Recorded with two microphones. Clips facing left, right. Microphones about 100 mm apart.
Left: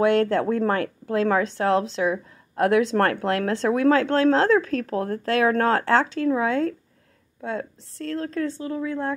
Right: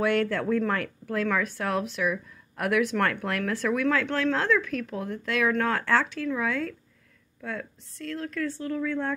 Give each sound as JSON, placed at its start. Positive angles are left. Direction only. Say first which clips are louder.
{"t": 0.0, "sound": "a woman's voice", "louder": "left 6 dB", "side_deg": 25}
{"t": 8.5, "sound": "speech", "louder": "left 2 dB", "side_deg": 20}